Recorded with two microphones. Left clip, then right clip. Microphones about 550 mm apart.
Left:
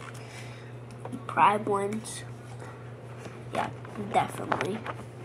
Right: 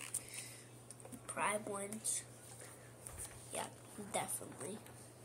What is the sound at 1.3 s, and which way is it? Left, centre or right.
Speech, right.